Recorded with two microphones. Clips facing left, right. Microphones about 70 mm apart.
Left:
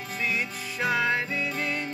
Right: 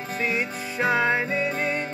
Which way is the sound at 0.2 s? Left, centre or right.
Right.